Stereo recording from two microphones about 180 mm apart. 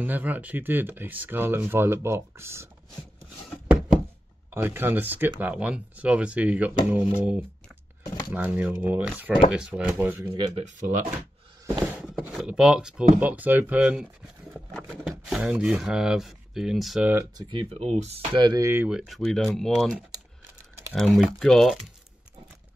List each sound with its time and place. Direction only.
0.0 s speech: 10° right (ahead or behind)
4.5 s speech: 10° right (ahead or behind)
8.0 s a sound: 25° left (ahead or behind)
8.3 s speech: 10° right (ahead or behind)
10.3 s speech: 25° right (ahead or behind)
10.6 s speech: 45° right (ahead or behind)
11.6 s a sound: 20° right (ahead or behind)
12.0 s speech: 5° right (ahead or behind)
17.4 s speech: 25° right (ahead or behind); by 21.9 s centre (ahead or behind)